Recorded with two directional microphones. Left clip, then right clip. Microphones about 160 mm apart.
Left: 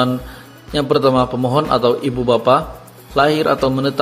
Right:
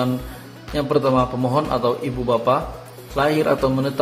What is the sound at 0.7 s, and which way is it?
A man's voice, 25° left (ahead or behind).